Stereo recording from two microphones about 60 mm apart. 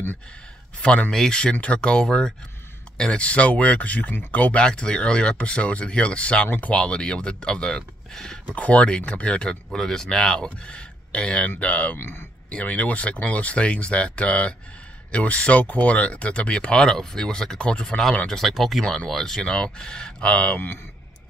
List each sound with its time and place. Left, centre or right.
1.1 s speech: centre
12.0 s speech: left
12.4 s speech: left
20.5 s speech: left